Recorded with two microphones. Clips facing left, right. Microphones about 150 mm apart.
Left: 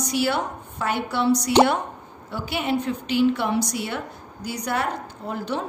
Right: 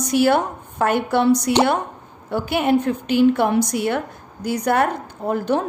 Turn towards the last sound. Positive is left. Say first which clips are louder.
# right 8 dB
turn(degrees=-50)  # may be behind; listen again after turning